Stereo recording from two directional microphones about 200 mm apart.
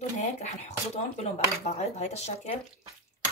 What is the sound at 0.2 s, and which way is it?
Speech, 35° left (ahead or behind).